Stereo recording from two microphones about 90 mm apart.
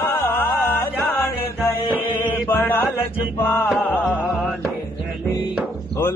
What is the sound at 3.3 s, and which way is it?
Mantra, 25° left (ahead or behind).